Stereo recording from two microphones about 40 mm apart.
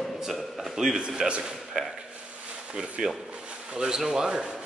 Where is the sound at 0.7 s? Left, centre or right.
Centre.